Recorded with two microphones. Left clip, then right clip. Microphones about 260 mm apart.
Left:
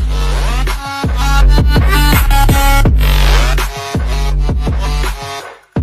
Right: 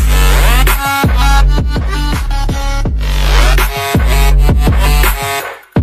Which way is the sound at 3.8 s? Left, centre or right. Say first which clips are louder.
Right 6 dB; right.